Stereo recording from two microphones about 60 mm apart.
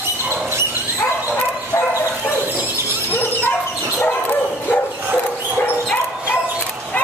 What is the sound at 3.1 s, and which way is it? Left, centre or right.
Dog, left.